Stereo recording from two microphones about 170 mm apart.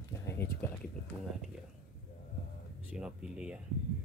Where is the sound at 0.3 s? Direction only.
15° left (ahead or behind).